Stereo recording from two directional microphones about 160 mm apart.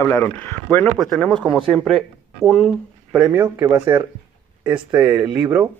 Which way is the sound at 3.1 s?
10° right (ahead or behind).